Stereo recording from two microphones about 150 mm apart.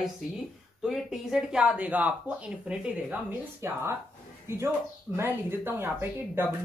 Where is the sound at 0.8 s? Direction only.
5° right (ahead or behind).